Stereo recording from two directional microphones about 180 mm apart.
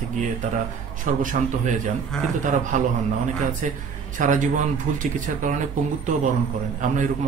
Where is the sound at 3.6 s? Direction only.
40° right (ahead or behind).